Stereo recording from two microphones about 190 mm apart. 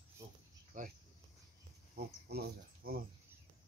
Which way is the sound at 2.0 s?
60° right (ahead or behind).